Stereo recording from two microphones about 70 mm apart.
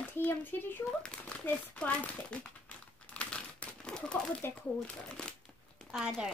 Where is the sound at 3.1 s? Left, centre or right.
Centre.